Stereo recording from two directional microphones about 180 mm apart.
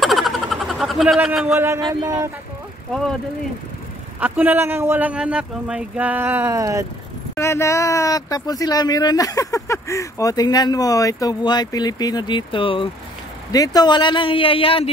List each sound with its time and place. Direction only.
0.0 s a sound: centre (ahead or behind)
1.5 s a man's voice: 15° right (ahead or behind)
2.9 s speech: centre (ahead or behind)
4.2 s a man's voice: 10° right (ahead or behind)
7.3 s speech: 15° left (ahead or behind); by 14.9 s 30° left (ahead or behind)